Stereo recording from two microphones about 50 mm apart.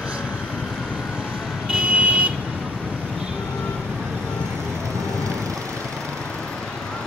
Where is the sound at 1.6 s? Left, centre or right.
Right.